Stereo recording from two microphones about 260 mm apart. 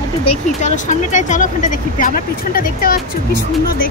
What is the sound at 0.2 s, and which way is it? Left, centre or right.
Speech, left.